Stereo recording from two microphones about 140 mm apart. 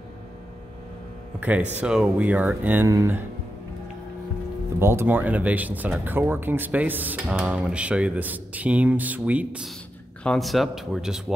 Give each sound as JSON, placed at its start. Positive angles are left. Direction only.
{"t": 1.4, "sound": "speech", "side_deg": -10}
{"t": 4.7, "sound": "speech", "side_deg": -20}
{"t": 10.2, "sound": "a man's voice", "side_deg": 5}